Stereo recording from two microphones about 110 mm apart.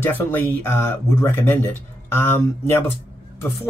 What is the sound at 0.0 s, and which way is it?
Speech, 20° left (ahead or behind).